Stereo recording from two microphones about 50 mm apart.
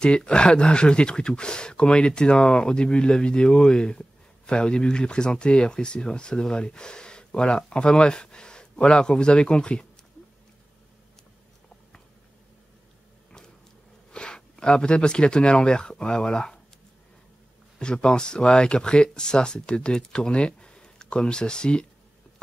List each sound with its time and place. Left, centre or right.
0.0 s speech: centre
14.1 s speech: centre
17.7 s speech: centre